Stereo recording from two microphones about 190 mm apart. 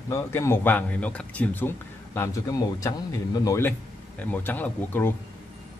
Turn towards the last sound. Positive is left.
turn(degrees=10)  # may be behind; listen again after turning